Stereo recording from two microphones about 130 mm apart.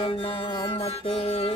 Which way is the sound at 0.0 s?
45° left (ahead or behind).